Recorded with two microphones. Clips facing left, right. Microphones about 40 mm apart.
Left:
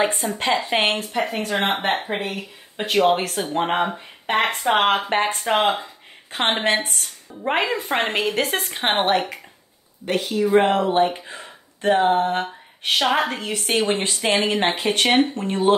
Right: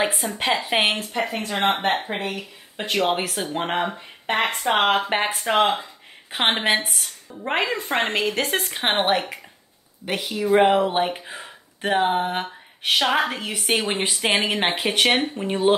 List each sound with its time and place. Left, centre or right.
0.0 s speech: centre
2.1 s speech: left
2.8 s speech: centre
3.7 s speech: centre
12.4 s a woman's voice: centre